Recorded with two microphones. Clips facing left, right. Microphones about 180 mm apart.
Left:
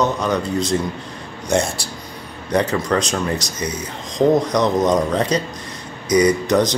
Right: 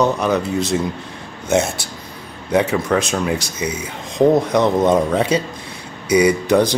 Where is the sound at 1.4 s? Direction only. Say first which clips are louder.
Right 2 dB; centre (ahead or behind).